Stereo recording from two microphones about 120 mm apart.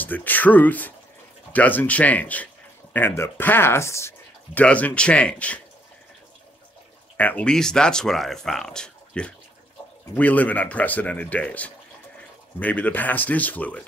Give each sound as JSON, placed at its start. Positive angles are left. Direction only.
{"t": 0.0, "sound": "speech", "side_deg": 15}
{"t": 7.2, "sound": "speech", "side_deg": 10}